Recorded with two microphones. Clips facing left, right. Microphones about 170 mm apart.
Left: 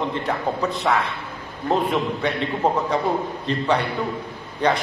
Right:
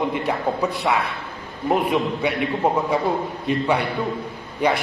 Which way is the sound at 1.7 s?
10° right (ahead or behind).